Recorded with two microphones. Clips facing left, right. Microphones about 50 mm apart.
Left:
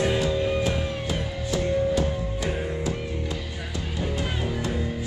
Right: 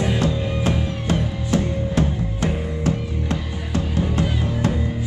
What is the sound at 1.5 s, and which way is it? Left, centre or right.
Music, right.